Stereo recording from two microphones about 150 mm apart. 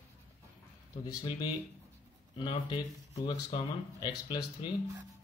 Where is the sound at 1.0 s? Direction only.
30° left (ahead or behind).